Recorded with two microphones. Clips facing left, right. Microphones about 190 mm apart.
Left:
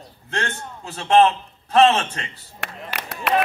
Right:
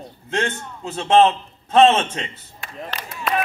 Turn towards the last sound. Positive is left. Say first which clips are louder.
# even
turn(degrees=75)  # may be behind; listen again after turning